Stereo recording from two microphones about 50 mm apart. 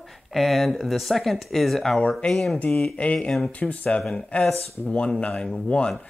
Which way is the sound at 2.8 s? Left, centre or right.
Left.